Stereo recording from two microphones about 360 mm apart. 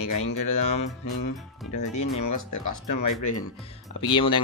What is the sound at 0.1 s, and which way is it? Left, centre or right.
Speech, left.